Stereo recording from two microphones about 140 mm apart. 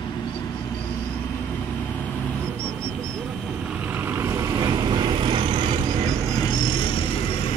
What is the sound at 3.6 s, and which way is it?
Vehicle, 10° right (ahead or behind).